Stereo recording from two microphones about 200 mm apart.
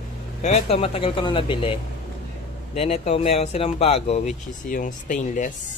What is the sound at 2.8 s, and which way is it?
Speech, 30° left (ahead or behind).